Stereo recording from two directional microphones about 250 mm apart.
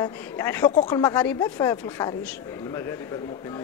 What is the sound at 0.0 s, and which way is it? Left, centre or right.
A man's voice, centre.